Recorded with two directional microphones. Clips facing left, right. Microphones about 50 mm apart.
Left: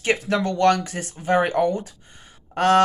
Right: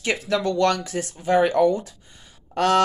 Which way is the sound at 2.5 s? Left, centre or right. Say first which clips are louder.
Left 2 dB; left.